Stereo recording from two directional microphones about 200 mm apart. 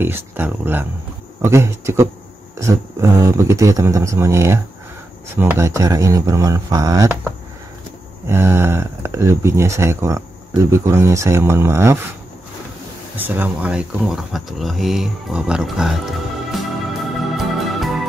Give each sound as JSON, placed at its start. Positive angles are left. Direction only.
{"t": 0.0, "sound": "speech", "side_deg": -10}
{"t": 8.3, "sound": "speech", "side_deg": -15}
{"t": 13.2, "sound": "speech", "side_deg": -10}